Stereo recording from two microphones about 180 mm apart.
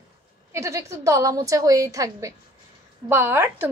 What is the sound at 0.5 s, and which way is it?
Speech, 15° right (ahead or behind).